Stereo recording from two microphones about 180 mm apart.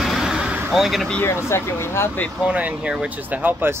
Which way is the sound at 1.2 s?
15° left (ahead or behind).